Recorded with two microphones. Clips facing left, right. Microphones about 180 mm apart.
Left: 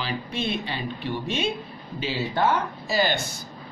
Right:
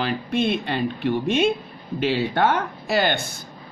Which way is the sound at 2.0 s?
65° right (ahead or behind).